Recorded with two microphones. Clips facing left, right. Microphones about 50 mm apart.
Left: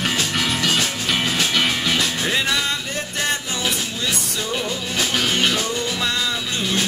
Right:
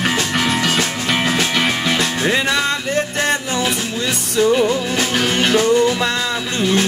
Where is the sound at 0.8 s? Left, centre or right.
Right.